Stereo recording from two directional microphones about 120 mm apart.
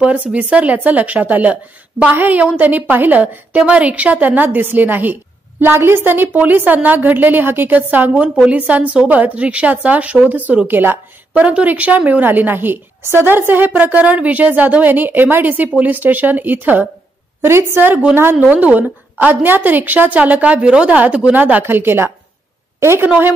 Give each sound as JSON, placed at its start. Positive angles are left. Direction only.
{"t": 0.0, "sound": "a woman's voice", "side_deg": -10}